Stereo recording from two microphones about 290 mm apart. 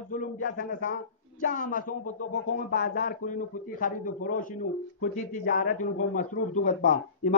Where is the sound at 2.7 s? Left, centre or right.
Left.